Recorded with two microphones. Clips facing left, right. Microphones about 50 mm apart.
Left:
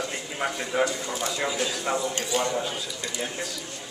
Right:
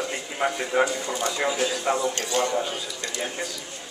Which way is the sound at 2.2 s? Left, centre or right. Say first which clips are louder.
Right 1 dB; centre.